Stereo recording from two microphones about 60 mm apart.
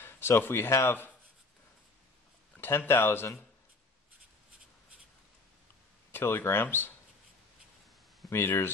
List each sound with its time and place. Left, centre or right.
0.0 s speech: left
2.9 s speech: left
6.1 s speech: left
8.3 s speech: left